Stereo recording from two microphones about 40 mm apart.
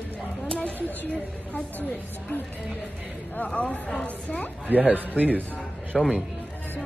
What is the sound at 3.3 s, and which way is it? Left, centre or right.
A woman's voice, left.